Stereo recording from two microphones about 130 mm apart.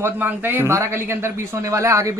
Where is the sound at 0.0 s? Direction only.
15° right (ahead or behind).